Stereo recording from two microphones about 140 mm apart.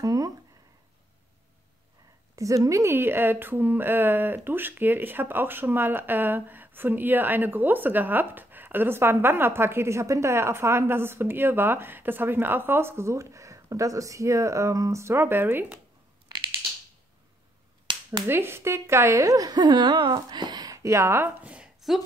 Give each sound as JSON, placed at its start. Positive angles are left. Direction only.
{"t": 0.0, "sound": "speech", "side_deg": -25}
{"t": 2.3, "sound": "speech", "side_deg": -25}
{"t": 17.9, "sound": "finger snapping", "side_deg": -35}
{"t": 18.2, "sound": "a woman's voice", "side_deg": -15}